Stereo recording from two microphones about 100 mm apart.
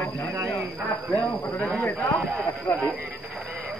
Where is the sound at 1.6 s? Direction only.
15° left (ahead or behind).